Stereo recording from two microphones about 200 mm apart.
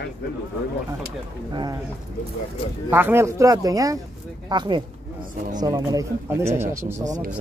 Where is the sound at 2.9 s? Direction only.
10° right (ahead or behind).